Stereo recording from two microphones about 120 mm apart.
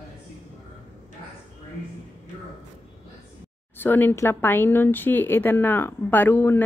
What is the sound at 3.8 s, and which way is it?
Speech, 15° left (ahead or behind).